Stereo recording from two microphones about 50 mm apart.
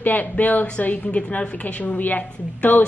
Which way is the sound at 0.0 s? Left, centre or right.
Left.